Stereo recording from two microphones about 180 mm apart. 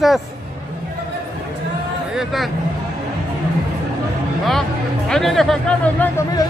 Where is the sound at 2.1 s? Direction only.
Centre (ahead or behind).